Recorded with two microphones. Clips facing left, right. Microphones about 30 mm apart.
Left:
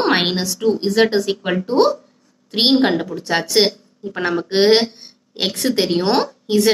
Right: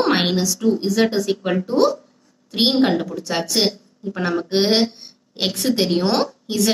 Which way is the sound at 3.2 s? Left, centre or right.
Left.